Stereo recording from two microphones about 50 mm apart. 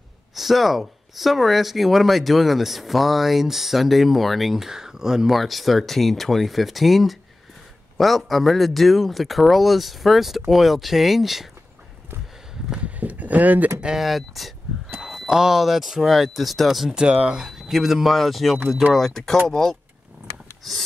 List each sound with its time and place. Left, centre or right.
0.3 s speech: centre
12.7 s a sound: right
13.9 s speech: centre
15.2 s speech: centre
17.0 s speech: right
17.4 s speech: centre